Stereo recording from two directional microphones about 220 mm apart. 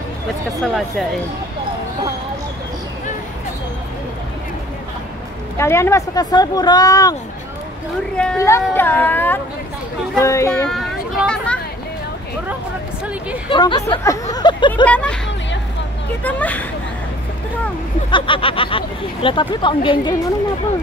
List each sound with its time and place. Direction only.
0.6 s speech: centre (ahead or behind)
5.6 s speech: 10° left (ahead or behind)
8.2 s speech: 10° left (ahead or behind)
10.7 s a sound: centre (ahead or behind)
13.5 s speech: 20° left (ahead or behind)
14.9 s speech: 5° left (ahead or behind)
16.3 s speech: 5° left (ahead or behind)
18.1 s speech: 25° left (ahead or behind)